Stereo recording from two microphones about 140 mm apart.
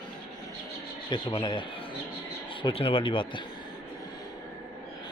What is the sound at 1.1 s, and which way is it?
Speech, 35° left (ahead or behind).